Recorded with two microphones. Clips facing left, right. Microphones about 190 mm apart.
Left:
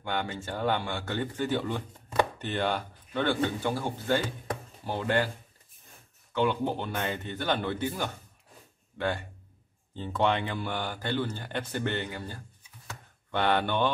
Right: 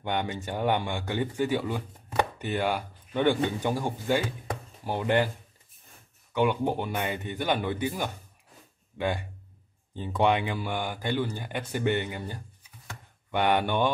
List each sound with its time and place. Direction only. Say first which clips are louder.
0.0 s speech: right 2 dB; 20° right (ahead or behind)
6.3 s speech: right 2 dB; 15° right (ahead or behind)